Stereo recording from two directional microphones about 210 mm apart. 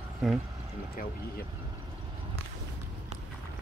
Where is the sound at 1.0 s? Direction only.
45° left (ahead or behind).